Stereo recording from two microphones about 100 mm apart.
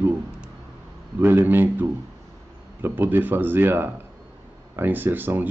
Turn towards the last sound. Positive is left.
turn(degrees=-20)  # may be behind; listen again after turning